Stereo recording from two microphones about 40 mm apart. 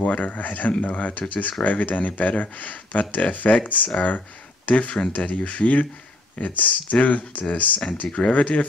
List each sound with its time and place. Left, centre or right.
0.0 s speech: left
8.1 s speech: left